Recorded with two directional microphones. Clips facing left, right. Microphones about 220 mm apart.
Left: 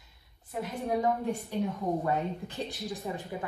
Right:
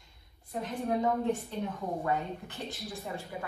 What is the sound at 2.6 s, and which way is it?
Speech, 15° left (ahead or behind).